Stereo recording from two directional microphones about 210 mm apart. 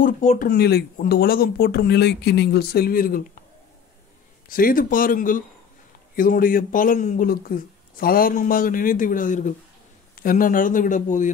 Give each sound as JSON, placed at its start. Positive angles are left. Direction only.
{"t": 0.0, "sound": "speech", "side_deg": 40}
{"t": 4.5, "sound": "speech", "side_deg": 40}